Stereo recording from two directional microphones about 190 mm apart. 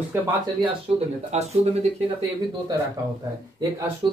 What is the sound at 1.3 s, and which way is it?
Speech, 35° right (ahead or behind).